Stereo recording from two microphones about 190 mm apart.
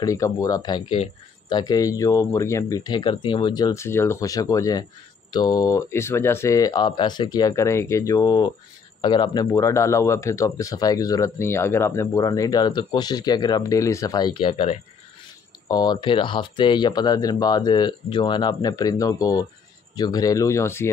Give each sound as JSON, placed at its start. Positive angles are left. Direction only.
{"t": 0.0, "sound": "speech", "side_deg": 15}
{"t": 15.7, "sound": "speech", "side_deg": 20}